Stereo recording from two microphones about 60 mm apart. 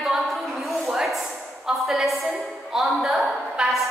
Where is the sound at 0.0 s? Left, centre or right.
Centre.